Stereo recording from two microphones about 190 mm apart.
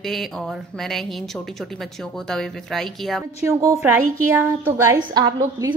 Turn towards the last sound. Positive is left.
turn(degrees=-20)  # may be behind; listen again after turning